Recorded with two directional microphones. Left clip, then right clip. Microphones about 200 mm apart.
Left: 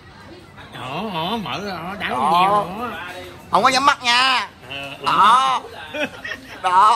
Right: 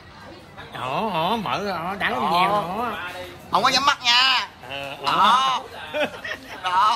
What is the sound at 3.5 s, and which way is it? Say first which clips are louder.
A man's voice: left 4 dB; 15° right (ahead or behind).